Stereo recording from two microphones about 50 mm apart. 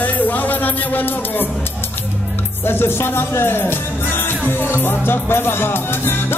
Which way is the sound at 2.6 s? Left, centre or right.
Left.